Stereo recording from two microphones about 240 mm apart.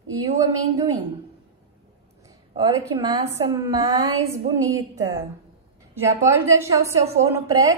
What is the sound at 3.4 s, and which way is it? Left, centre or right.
A woman's voice, centre.